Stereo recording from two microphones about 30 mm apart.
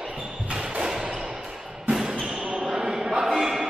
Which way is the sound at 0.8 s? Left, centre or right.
Right.